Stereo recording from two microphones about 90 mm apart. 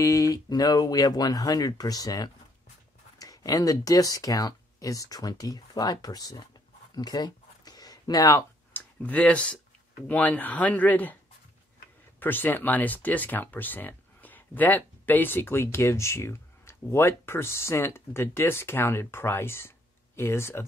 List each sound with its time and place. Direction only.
0.0 s speech: 40° left (ahead or behind)
7.0 s a sound: 50° left (ahead or behind)
8.7 s speech: 15° left (ahead or behind)
12.2 s speech: 20° left (ahead or behind)